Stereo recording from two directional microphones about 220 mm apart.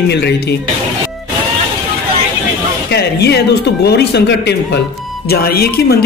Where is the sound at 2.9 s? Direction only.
50° left (ahead or behind).